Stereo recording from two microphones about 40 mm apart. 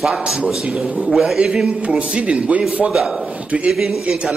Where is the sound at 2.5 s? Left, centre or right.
Right.